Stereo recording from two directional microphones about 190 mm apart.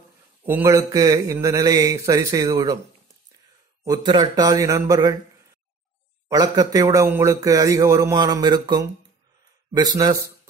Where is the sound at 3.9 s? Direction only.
20° right (ahead or behind).